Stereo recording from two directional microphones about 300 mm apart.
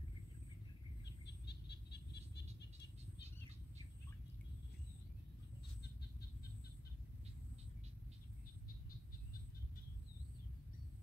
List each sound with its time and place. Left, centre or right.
1.0 s bird: left